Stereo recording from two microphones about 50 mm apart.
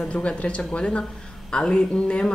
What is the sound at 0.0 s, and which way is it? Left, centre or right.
A woman's voice, left.